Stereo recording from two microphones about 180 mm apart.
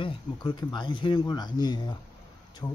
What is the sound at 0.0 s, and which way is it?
Speech, 20° left (ahead or behind).